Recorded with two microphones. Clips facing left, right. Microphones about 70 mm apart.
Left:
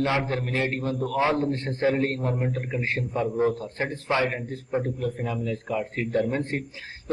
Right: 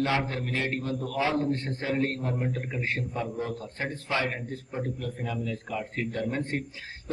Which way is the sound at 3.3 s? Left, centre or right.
Left.